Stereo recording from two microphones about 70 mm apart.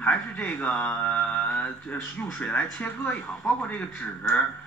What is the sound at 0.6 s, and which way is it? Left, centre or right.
Mantra, centre.